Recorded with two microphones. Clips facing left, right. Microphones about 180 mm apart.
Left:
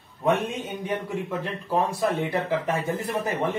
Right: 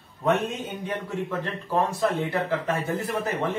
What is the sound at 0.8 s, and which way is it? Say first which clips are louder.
Speech: left 1 dB; 15° left (ahead or behind).